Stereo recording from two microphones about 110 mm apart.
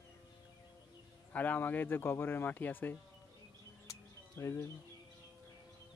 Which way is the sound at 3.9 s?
25° left (ahead or behind).